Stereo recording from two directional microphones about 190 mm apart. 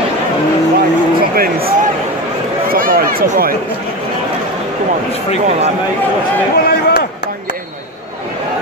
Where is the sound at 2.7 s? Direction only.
50° right (ahead or behind).